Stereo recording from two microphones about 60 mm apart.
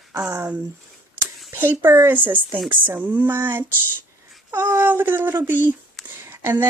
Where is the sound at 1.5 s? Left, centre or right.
Right.